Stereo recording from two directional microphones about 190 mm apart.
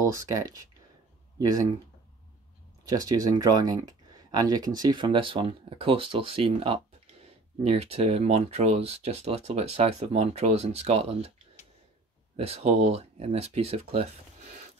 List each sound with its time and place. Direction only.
0.0 s speech: 15° right (ahead or behind)
2.8 s speech: 20° right (ahead or behind)
12.4 s speech: 35° right (ahead or behind)